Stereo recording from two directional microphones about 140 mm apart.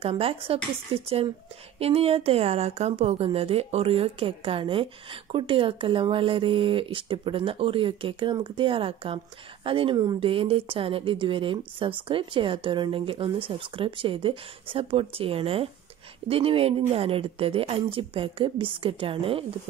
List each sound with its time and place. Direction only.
0.0 s a woman's voice: 40° right (ahead or behind)